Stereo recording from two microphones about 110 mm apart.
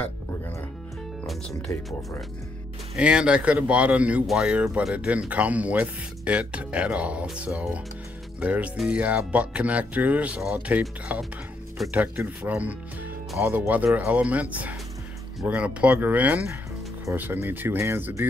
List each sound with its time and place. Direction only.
3.0 s speech: 10° right (ahead or behind)
12.4 s speech: 15° right (ahead or behind)